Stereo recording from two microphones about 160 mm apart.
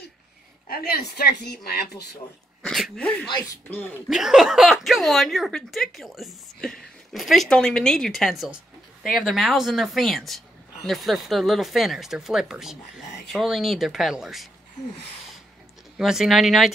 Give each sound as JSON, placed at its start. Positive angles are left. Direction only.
{"t": 0.7, "sound": "speech", "side_deg": 75}
{"t": 2.6, "sound": "speech", "side_deg": 5}
{"t": 4.1, "sound": "speech", "side_deg": -5}
{"t": 16.0, "sound": "speech", "side_deg": 0}